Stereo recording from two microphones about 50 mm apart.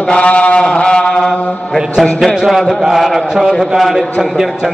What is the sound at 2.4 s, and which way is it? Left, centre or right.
A man's voice, centre.